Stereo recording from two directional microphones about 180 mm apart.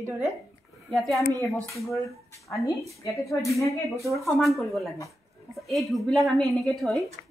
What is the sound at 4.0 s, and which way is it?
Speech, 15° right (ahead or behind).